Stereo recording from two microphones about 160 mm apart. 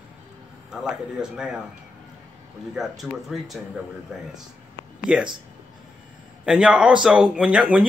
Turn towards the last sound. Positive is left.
turn(degrees=-5)  # may be behind; listen again after turning